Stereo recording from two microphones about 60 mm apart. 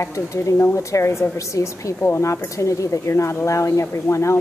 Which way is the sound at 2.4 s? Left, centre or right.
Left.